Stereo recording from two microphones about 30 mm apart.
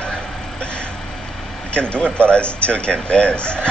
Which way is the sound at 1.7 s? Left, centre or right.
Left.